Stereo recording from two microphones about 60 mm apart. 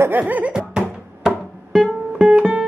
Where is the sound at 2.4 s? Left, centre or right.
Right.